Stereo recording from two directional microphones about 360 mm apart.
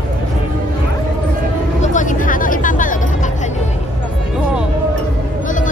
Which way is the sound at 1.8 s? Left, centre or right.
Left.